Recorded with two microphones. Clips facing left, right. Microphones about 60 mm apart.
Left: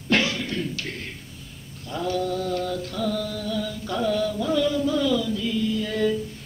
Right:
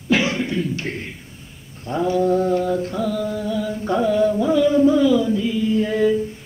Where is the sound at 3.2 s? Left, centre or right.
Right.